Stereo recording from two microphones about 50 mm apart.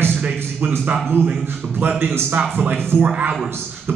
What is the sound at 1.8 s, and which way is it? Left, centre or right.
Speech, right.